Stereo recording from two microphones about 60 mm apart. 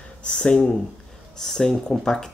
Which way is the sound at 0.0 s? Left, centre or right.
Centre.